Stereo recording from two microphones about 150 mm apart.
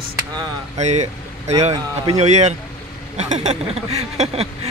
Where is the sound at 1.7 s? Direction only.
25° right (ahead or behind).